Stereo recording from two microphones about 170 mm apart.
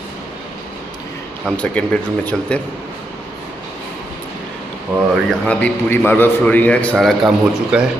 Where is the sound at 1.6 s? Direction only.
10° left (ahead or behind).